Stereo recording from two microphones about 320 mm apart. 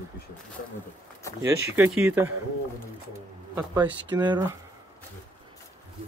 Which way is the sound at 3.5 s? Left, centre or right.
Centre.